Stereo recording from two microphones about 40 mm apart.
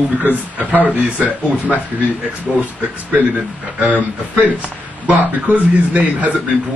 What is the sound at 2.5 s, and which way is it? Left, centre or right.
Speech, centre.